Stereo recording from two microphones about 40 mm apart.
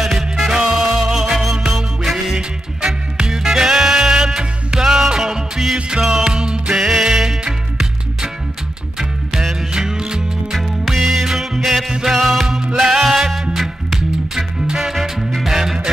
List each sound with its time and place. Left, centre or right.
0.0 s music: centre
2.8 s music: centre
5.2 s music: centre
8.9 s music: centre
10.5 s music: centre
12.5 s music: centre